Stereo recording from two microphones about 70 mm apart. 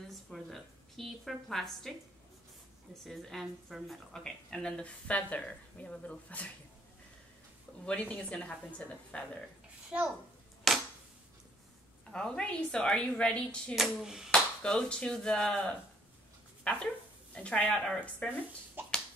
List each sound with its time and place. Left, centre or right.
0.1 s a woman's voice: centre
3.1 s a woman's voice: centre
7.8 s a woman's voice: centre
9.8 s a child's voice: centre
10.7 s a sound: centre
12.1 s a woman's voice: centre
13.7 s speech: centre
14.3 s a sound: centre
16.6 s dog: centre
17.4 s a woman's voice: centre
18.8 s finger snapping: right